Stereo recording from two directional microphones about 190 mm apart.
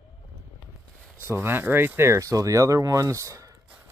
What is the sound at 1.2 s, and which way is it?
Speech, 10° right (ahead or behind).